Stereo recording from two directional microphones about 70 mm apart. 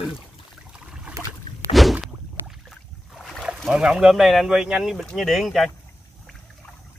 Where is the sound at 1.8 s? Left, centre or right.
Centre.